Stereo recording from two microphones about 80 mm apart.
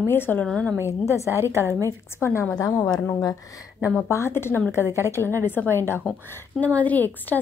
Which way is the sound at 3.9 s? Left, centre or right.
Left.